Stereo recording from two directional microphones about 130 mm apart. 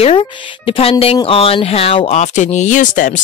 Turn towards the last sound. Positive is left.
turn(degrees=85)